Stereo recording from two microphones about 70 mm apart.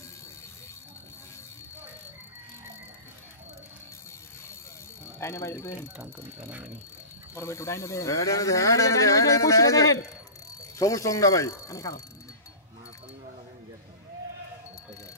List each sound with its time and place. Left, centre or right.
5.2 s speech: left
7.3 s speech: left